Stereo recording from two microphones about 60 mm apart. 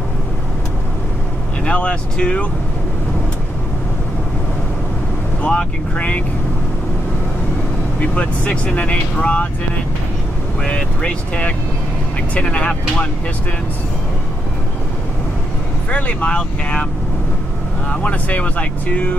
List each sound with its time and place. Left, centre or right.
1.7 s speech: centre
5.4 s speech: centre
8.0 s speech: left
10.6 s speech: centre
15.9 s speech: centre
17.8 s speech: left